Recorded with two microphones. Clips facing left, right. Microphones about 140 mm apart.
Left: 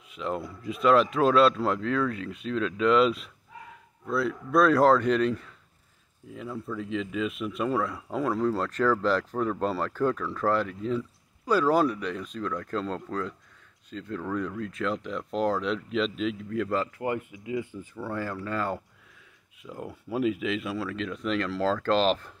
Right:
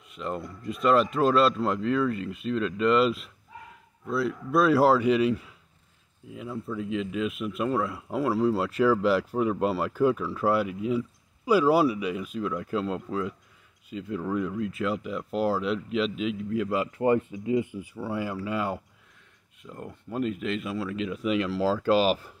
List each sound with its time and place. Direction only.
0.1 s speech: centre (ahead or behind)
17.3 s speech: 25° right (ahead or behind)
17.6 s speech: 10° right (ahead or behind)
19.6 s speech: centre (ahead or behind)